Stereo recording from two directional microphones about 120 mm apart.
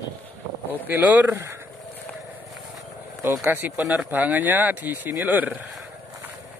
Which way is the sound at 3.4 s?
15° right (ahead or behind).